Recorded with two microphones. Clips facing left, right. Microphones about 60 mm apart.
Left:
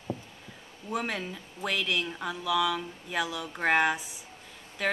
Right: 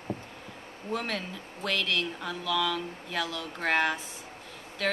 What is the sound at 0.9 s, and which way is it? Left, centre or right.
Speech, centre.